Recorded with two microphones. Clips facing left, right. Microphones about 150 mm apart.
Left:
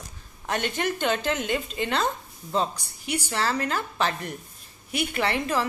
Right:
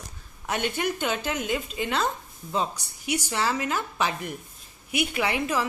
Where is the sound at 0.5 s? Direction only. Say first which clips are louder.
Even; 10° right (ahead or behind).